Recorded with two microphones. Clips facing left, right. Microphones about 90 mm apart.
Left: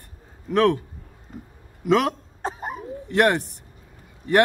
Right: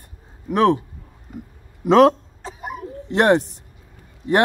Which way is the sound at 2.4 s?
40° left (ahead or behind).